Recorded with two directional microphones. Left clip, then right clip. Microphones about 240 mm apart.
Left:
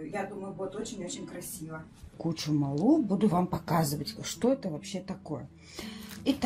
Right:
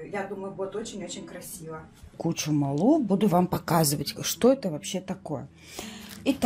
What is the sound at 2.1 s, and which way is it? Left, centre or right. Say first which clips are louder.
Speech: right 4 dB; right.